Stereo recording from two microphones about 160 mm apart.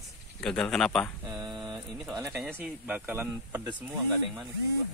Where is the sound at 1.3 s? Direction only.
25° right (ahead or behind).